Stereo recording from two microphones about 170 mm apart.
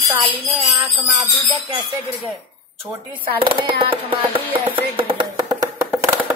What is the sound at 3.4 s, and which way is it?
Music, 30° right (ahead or behind).